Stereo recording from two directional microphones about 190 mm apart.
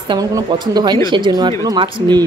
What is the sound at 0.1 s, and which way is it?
Speech, 20° right (ahead or behind).